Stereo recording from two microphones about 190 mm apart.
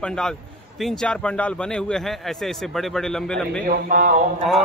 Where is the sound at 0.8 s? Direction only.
5° left (ahead or behind).